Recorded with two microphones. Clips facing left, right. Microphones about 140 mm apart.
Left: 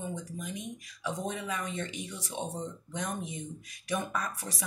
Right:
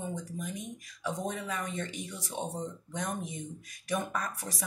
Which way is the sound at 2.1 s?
15° right (ahead or behind).